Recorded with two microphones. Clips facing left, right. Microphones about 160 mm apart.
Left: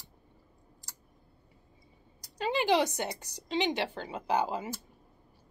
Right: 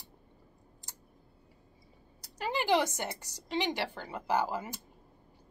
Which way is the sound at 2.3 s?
20° left (ahead or behind).